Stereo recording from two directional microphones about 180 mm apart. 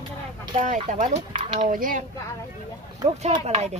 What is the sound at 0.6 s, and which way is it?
Speech, 45° right (ahead or behind).